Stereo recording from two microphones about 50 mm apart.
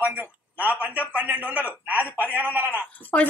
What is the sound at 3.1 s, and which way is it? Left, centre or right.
Speech, left.